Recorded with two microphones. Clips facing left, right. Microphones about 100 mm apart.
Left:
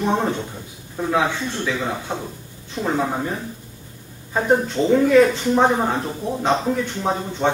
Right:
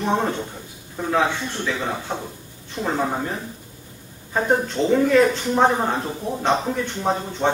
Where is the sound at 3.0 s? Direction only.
Centre (ahead or behind).